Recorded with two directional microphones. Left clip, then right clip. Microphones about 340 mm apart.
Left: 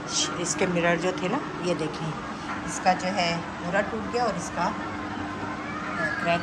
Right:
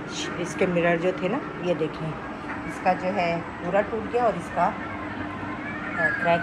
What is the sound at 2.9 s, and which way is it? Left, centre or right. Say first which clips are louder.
Speech: right 1 dB; centre.